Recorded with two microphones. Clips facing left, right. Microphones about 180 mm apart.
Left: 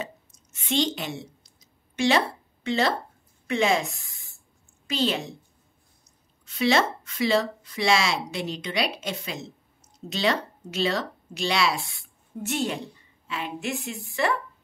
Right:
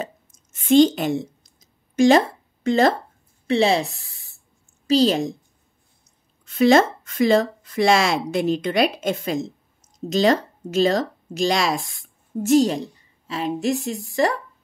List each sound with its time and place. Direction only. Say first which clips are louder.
0.0 s a sound: right 4 dB; 50° right (ahead or behind)
3.4 s a woman's voice: right 5 dB; 35° right (ahead or behind)
6.4 s speech: right 7 dB; 50° right (ahead or behind)